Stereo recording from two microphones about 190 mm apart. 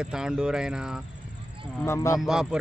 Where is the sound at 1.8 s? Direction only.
15° left (ahead or behind).